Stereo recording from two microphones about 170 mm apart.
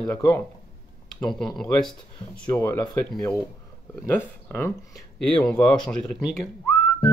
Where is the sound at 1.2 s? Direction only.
5° left (ahead or behind).